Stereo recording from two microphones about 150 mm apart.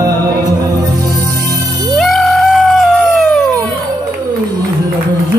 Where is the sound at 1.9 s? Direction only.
Centre (ahead or behind).